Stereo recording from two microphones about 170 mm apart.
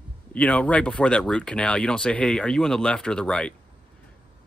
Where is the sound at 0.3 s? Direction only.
5° left (ahead or behind).